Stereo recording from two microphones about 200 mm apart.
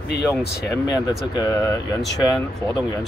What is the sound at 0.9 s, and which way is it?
Speech, 20° left (ahead or behind).